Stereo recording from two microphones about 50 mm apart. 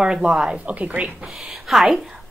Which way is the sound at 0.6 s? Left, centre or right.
Right.